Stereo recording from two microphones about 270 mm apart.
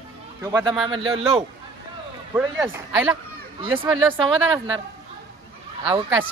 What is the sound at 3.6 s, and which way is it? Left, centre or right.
Speech, centre.